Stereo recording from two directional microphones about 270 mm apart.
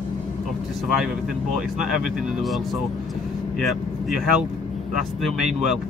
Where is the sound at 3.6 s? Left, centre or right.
Centre.